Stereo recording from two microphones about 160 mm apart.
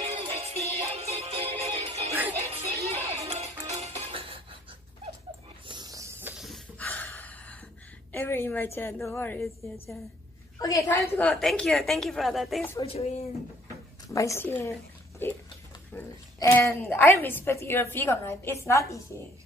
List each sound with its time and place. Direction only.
0.0 s music: 40° right (ahead or behind)
5.7 s a sound: 25° right (ahead or behind)
6.3 s a sound: centre (ahead or behind)
6.8 s a sound: 10° left (ahead or behind)
8.1 s a woman's voice: 15° left (ahead or behind)
9.4 s a woman's voice: centre (ahead or behind)
10.6 s a woman's voice: 20° left (ahead or behind)
11.1 s a woman's voice: 5° left (ahead or behind)
14.0 s speech: 20° left (ahead or behind)
16.3 s a woman's voice: 20° left (ahead or behind)